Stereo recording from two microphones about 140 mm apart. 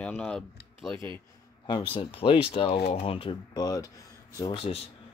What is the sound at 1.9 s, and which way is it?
Speech, 40° left (ahead or behind).